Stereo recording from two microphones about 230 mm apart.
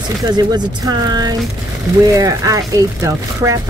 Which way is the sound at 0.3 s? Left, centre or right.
Centre.